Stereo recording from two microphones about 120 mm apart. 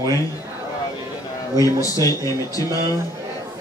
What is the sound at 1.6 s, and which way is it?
Speech, 30° left (ahead or behind).